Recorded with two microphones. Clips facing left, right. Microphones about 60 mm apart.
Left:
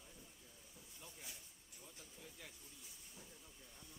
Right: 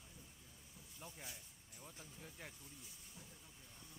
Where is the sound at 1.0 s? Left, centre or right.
Right.